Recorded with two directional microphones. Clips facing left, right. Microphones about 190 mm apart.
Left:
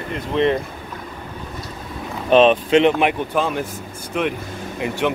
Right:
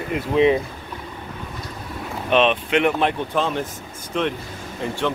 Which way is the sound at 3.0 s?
10° left (ahead or behind).